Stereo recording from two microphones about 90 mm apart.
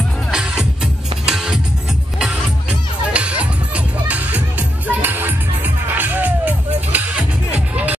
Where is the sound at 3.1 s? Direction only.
15° right (ahead or behind).